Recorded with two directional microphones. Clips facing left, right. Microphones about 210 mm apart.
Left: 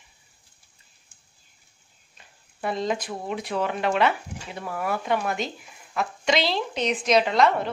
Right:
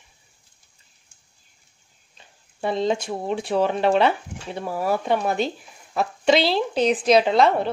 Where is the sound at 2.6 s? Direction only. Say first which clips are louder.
Right 4 dB; 25° right (ahead or behind).